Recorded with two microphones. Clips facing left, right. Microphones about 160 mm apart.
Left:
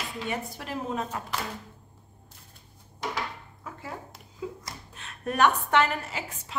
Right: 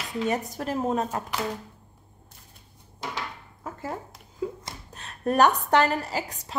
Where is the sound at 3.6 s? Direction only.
45° right (ahead or behind).